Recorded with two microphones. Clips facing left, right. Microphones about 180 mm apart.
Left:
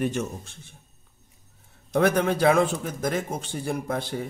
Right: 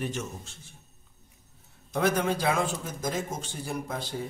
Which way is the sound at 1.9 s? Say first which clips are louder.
Left 5 dB; 60° left (ahead or behind).